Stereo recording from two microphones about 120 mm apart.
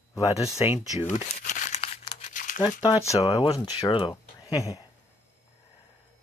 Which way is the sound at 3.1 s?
30° left (ahead or behind).